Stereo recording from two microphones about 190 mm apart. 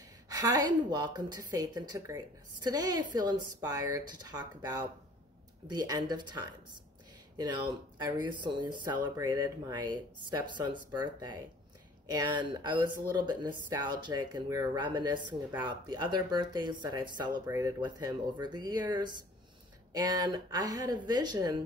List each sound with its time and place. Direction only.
0.0 s a woman's voice: 20° right (ahead or behind)